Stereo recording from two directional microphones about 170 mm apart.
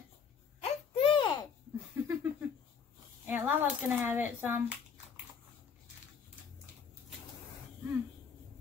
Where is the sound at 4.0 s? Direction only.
10° right (ahead or behind).